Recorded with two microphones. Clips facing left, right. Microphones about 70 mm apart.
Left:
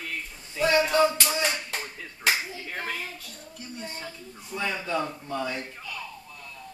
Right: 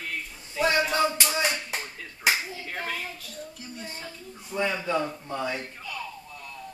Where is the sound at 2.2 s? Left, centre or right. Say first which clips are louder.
Right 1 dB; centre.